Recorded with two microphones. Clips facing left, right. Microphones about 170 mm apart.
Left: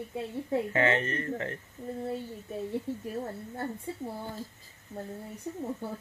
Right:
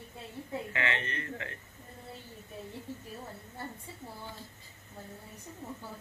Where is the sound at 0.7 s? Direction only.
40° left (ahead or behind).